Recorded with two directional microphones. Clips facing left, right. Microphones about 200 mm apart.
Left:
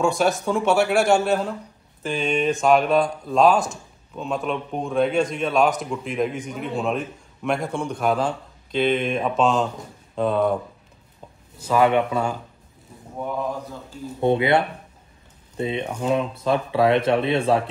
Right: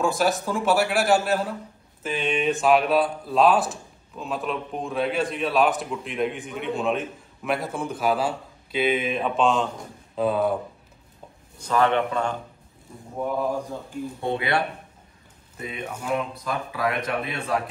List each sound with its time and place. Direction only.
0.0 s speech: centre (ahead or behind)
11.5 s speech: 10° left (ahead or behind)
13.6 s speech: 15° right (ahead or behind)
14.2 s speech: 20° left (ahead or behind)